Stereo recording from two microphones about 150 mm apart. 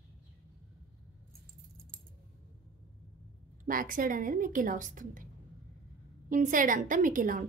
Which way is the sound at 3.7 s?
65° right (ahead or behind).